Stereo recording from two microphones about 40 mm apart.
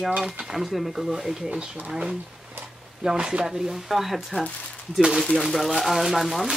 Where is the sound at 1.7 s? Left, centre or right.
Right.